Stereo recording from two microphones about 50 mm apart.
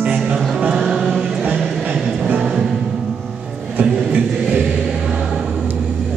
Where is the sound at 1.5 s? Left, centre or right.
Centre.